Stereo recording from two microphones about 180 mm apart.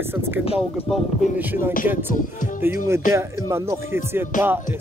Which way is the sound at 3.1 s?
15° right (ahead or behind).